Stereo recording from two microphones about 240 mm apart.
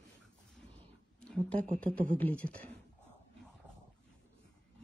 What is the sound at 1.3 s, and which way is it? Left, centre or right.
Speech, centre.